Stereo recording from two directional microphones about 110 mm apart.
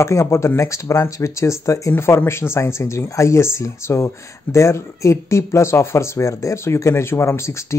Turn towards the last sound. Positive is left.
turn(degrees=25)  # may be behind; listen again after turning